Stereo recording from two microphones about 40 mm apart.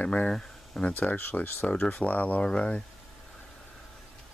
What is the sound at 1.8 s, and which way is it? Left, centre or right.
Speech, left.